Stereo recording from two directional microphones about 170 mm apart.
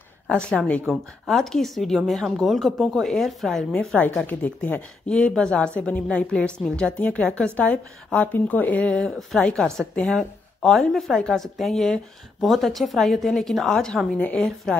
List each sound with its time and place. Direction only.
0.3 s a woman's voice: 5° left (ahead or behind)